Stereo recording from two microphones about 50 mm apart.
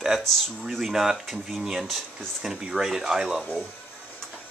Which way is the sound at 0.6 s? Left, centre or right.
Centre.